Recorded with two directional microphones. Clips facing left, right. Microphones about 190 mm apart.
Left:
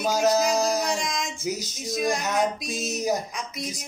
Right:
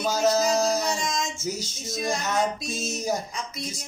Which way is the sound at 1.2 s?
15° left (ahead or behind).